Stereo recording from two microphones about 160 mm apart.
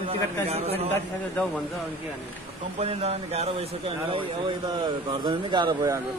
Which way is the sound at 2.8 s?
40° right (ahead or behind).